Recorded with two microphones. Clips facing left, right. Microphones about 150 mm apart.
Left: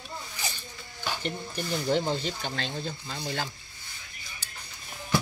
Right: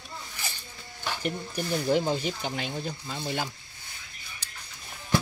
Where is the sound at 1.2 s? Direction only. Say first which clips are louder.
Right 2 dB; 10° right (ahead or behind).